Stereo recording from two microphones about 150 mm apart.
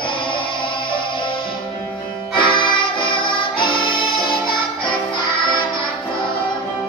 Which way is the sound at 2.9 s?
35° left (ahead or behind).